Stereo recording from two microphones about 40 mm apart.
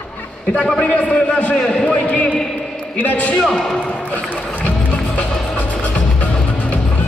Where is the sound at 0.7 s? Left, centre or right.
Left.